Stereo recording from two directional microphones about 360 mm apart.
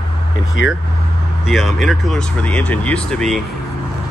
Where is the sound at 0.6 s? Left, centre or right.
Left.